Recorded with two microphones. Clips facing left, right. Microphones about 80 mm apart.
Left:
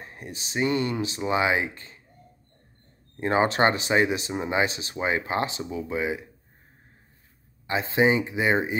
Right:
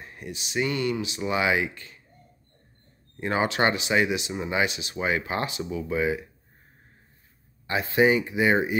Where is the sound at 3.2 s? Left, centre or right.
Left.